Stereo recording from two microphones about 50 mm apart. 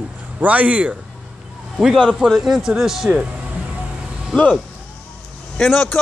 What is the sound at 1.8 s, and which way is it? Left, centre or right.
Speech, centre.